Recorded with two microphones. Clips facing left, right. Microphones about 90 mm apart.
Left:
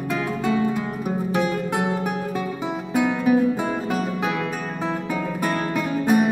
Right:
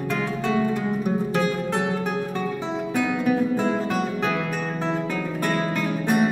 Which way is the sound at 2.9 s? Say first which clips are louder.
Left 4 dB; 10° left (ahead or behind).